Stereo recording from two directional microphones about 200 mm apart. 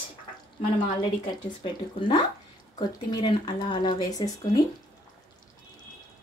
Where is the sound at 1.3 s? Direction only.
25° left (ahead or behind).